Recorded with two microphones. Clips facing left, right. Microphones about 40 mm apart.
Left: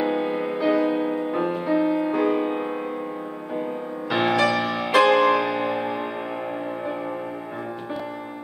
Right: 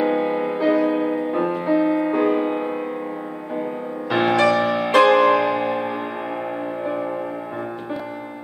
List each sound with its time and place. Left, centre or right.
0.0 s music: centre
4.1 s music: centre